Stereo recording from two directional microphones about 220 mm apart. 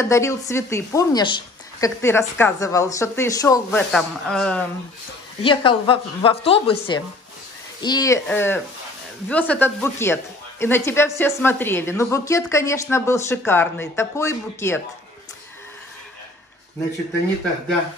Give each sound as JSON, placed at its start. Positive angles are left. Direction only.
{"t": 0.0, "sound": "a woman's voice", "side_deg": 15}
{"t": 3.9, "sound": "speech", "side_deg": 5}
{"t": 5.4, "sound": "a woman's voice", "side_deg": 25}